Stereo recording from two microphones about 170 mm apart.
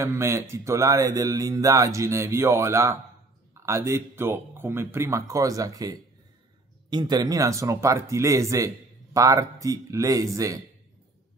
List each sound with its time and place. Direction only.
0.0 s speech: 15° right (ahead or behind)